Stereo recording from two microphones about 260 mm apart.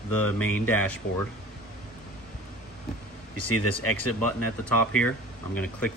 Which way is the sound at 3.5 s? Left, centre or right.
Left.